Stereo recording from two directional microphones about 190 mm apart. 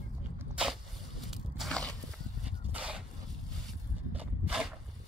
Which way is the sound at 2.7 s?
5° right (ahead or behind).